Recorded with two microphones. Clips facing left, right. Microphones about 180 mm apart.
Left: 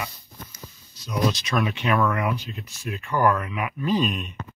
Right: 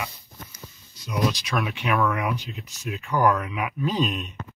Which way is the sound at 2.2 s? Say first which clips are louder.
Left 1 dB; 15° right (ahead or behind).